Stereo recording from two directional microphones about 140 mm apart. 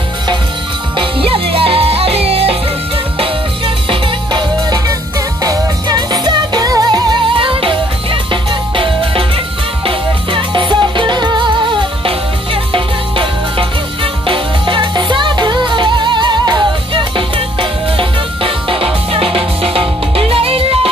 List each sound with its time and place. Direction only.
0.9 s music: 40° right (ahead or behind)